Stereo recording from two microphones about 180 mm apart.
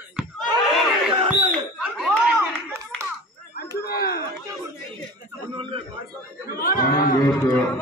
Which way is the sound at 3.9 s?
60° left (ahead or behind).